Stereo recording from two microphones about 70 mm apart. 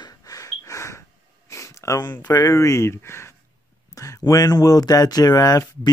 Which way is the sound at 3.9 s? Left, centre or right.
Left.